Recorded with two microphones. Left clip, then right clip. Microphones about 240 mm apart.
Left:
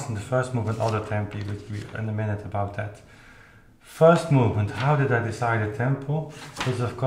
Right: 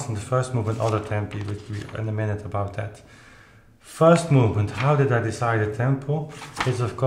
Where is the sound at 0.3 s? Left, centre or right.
Right.